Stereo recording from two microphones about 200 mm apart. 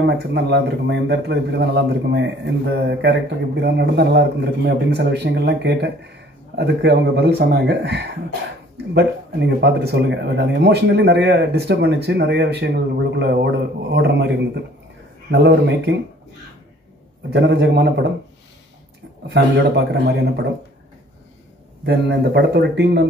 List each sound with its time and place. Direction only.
0.0 s speech: 60° right (ahead or behind)
17.3 s speech: 60° right (ahead or behind)
19.2 s speech: 60° right (ahead or behind)
21.8 s speech: 55° right (ahead or behind)